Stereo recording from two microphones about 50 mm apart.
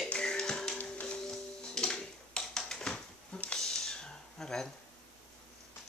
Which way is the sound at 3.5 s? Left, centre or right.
Centre.